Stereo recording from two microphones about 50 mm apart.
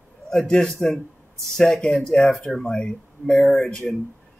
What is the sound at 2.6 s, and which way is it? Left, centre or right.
Speech, centre.